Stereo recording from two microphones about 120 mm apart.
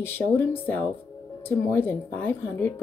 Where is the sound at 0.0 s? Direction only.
20° left (ahead or behind).